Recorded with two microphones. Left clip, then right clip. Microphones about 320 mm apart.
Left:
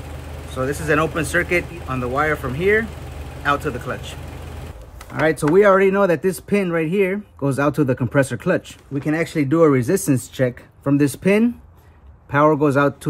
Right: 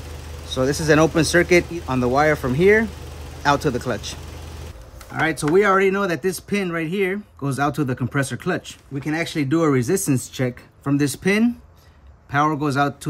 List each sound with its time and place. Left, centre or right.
0.6 s speech: right
5.3 s speech: centre